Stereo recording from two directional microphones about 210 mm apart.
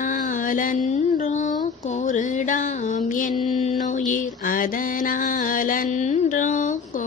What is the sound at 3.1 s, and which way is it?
Mantra, 40° left (ahead or behind).